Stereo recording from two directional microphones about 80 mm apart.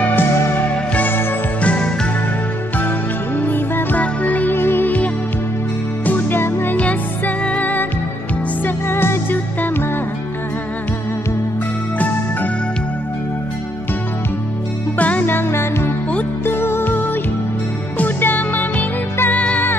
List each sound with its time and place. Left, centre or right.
0.0 s music: left
3.3 s music: left
6.8 s music: centre
15.0 s music: centre